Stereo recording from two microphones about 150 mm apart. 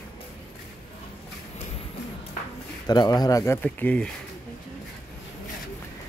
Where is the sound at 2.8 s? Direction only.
25° left (ahead or behind); by 4.1 s 10° left (ahead or behind).